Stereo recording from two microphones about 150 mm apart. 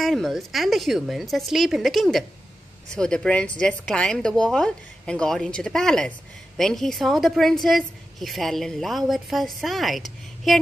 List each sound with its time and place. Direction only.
0.0 s a woman's voice: centre (ahead or behind)